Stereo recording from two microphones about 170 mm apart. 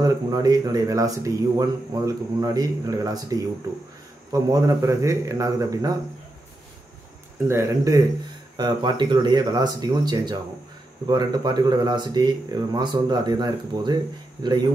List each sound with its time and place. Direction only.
0.0 s speech: 20° right (ahead or behind)
7.4 s speech: 20° right (ahead or behind)